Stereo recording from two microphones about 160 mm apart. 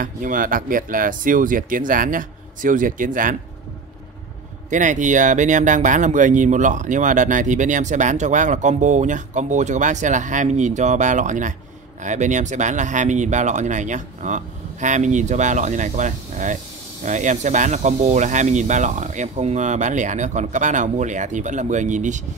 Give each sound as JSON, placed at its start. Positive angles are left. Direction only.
{"t": 0.0, "sound": "speech", "side_deg": -60}
{"t": 4.6, "sound": "speech", "side_deg": -50}